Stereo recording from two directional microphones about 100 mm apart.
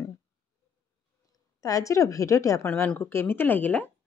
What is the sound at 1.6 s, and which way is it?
Speech, 35° left (ahead or behind).